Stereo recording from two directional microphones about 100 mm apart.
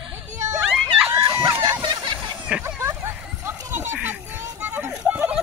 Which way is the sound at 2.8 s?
25° right (ahead or behind).